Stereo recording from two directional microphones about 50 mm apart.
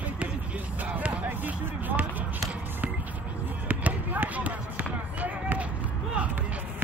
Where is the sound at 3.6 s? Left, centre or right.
Right.